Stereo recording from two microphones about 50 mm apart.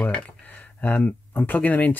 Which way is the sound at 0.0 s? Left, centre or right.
Left.